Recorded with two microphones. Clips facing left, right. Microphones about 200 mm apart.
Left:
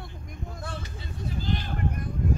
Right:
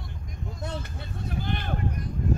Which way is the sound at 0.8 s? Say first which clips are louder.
Even; 60° right (ahead or behind).